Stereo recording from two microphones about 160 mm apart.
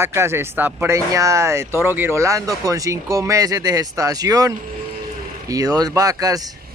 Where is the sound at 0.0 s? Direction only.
15° right (ahead or behind).